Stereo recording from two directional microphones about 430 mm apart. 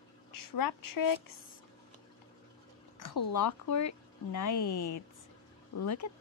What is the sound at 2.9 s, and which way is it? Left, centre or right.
Speech, left.